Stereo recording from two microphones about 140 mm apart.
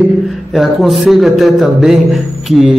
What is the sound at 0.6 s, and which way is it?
Speech, centre (ahead or behind).